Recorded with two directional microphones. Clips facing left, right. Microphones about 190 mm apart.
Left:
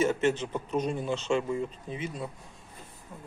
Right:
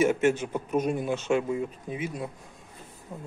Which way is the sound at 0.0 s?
10° right (ahead or behind).